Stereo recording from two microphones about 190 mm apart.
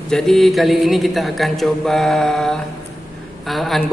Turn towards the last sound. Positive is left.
turn(degrees=0)  # may be behind; listen again after turning